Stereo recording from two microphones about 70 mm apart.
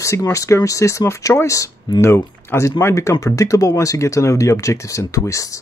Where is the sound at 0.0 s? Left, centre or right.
Left.